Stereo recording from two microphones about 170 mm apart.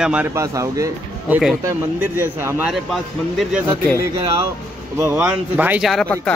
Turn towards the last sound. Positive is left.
turn(degrees=5)  # may be behind; listen again after turning